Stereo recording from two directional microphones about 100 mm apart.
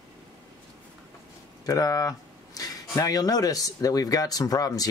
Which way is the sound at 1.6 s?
35° left (ahead or behind).